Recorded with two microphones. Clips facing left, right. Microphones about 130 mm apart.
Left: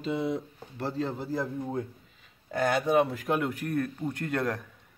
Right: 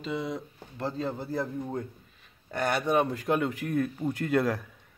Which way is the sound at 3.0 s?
Centre (ahead or behind).